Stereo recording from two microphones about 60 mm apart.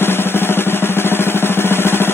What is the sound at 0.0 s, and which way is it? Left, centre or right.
Drum, left.